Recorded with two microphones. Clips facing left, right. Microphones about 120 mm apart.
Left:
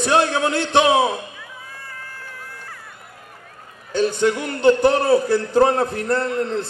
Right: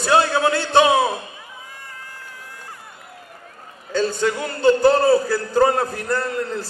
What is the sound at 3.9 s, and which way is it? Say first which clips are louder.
A man's voice: left 2 dB; 20° left (ahead or behind).